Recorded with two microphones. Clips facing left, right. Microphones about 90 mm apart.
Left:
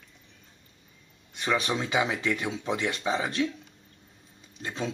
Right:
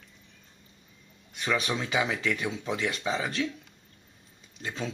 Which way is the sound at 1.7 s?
20° left (ahead or behind).